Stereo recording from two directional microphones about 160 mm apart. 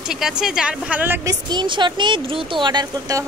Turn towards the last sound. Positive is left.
turn(degrees=-25)  # may be behind; listen again after turning